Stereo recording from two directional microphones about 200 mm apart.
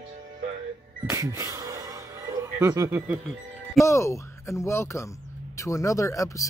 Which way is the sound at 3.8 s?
15° left (ahead or behind).